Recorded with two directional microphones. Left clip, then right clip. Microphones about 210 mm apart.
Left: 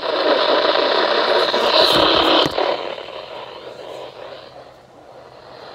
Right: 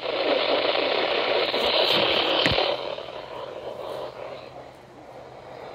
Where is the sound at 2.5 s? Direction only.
40° left (ahead or behind).